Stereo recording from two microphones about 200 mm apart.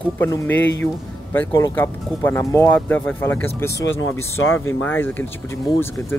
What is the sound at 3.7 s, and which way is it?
Speech, 70° left (ahead or behind).